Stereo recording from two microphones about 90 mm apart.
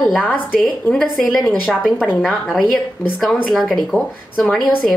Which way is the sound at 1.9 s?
15° left (ahead or behind).